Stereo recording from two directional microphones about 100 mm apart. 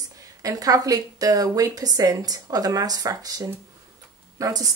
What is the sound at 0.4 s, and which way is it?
A woman's voice, 35° right (ahead or behind).